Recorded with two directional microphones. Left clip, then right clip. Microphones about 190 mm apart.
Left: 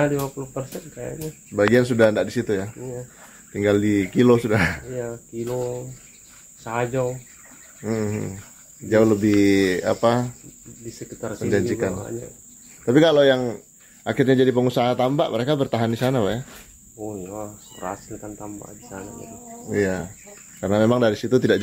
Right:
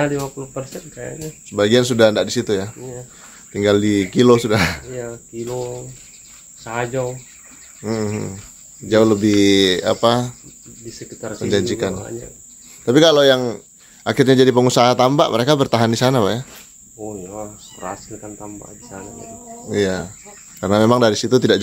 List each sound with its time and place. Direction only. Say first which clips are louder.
0.0 s speech: right 2 dB; 5° right (ahead or behind)
1.5 s speech: right 3 dB; 20° right (ahead or behind)
4.9 s speech: right 1 dB; 5° left (ahead or behind)
7.8 s bird: right 3 dB; 20° right (ahead or behind)
8.8 s speech: right 3 dB; 25° right (ahead or behind)
10.9 s speech: right 2 dB; 10° left (ahead or behind)
11.3 s a man's voice: right 3 dB; 20° right (ahead or behind)
17.0 s speech: right 2 dB; 5° left (ahead or behind)
19.7 s speech: right 3 dB; 20° right (ahead or behind)
20.6 s a man's voice: right 5 dB; 35° right (ahead or behind)